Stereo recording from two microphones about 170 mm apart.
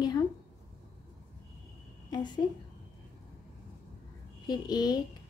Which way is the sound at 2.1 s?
25° left (ahead or behind).